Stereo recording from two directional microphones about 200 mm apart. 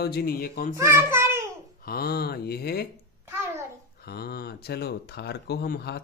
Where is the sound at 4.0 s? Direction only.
50° left (ahead or behind).